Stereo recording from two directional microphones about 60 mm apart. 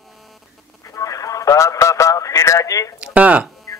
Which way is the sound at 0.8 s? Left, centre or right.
Left.